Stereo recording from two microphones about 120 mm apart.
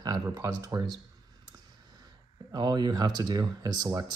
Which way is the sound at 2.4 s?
35° right (ahead or behind).